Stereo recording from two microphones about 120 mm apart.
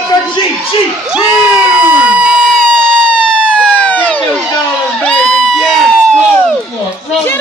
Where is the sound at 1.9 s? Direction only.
10° right (ahead or behind).